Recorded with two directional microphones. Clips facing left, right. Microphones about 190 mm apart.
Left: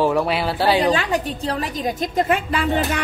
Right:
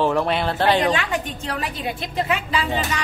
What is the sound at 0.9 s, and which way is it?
A woman's voice, 35° left (ahead or behind).